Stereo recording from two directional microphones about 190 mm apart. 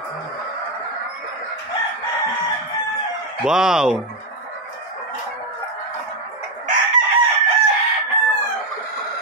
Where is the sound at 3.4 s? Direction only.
5° right (ahead or behind).